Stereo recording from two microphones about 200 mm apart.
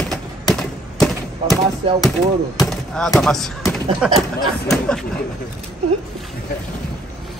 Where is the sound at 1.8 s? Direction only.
30° right (ahead or behind).